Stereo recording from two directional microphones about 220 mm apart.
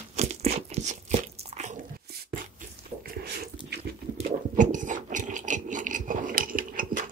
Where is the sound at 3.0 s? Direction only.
40° right (ahead or behind).